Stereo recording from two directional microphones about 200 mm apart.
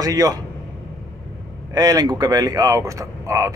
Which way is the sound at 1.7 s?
20° right (ahead or behind).